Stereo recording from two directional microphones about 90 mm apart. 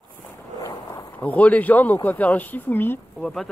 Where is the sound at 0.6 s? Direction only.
50° left (ahead or behind).